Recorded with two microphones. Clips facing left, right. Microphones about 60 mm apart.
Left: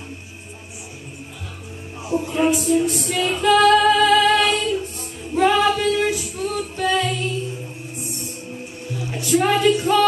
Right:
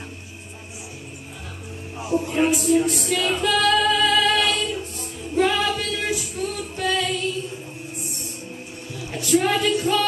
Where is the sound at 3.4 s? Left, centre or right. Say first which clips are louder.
Left 7 dB; left.